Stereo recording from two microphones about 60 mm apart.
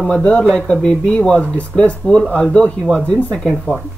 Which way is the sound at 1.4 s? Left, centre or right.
Left.